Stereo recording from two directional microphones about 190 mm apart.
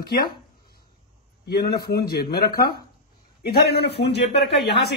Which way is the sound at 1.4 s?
55° left (ahead or behind).